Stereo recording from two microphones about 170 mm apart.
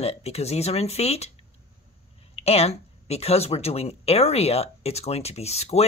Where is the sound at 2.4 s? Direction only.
35° left (ahead or behind).